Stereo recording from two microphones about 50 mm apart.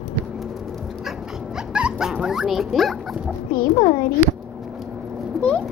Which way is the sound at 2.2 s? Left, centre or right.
Centre.